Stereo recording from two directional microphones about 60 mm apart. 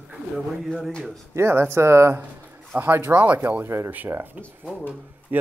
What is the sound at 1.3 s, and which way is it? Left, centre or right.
Speech, right.